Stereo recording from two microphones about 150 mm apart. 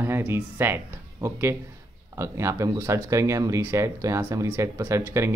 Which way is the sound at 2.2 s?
20° right (ahead or behind).